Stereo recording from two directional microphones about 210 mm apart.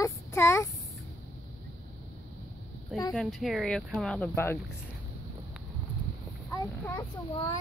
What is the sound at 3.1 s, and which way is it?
Speech, centre (ahead or behind).